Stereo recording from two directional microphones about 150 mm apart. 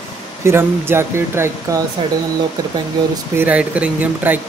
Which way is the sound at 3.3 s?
10° right (ahead or behind).